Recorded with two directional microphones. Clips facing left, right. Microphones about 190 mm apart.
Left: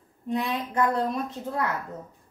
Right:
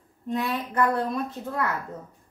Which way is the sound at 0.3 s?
15° left (ahead or behind).